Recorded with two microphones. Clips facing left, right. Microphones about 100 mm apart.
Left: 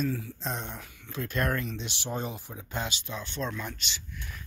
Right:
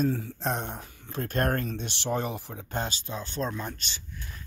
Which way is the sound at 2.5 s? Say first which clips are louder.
Right 2 dB; 45° right (ahead or behind).